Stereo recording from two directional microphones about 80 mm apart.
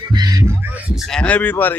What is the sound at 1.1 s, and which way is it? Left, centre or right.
Speech, centre.